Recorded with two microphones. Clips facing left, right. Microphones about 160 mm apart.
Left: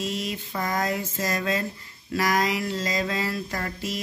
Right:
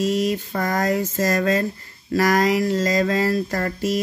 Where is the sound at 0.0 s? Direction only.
45° right (ahead or behind).